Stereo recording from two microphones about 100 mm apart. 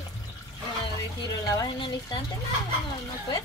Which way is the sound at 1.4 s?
45° left (ahead or behind).